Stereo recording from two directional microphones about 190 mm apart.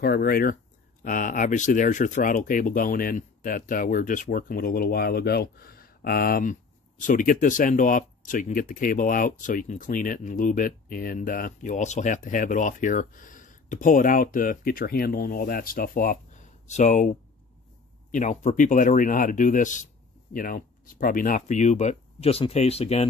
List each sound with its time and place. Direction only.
0.0 s speech: 50° left (ahead or behind)
18.1 s speech: 40° left (ahead or behind)